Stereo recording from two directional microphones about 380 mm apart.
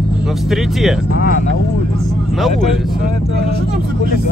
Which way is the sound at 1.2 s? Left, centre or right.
Left.